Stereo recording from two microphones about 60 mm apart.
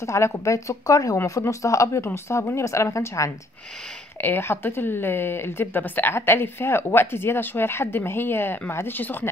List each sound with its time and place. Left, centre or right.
0.0 s a woman's voice: left
2.2 s a woman's voice: left
4.2 s a woman's voice: left